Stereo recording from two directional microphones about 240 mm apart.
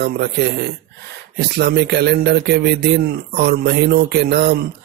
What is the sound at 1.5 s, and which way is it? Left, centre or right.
Speech, right.